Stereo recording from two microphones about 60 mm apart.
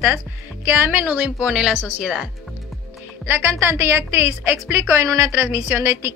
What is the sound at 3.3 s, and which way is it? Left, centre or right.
A woman's voice, right.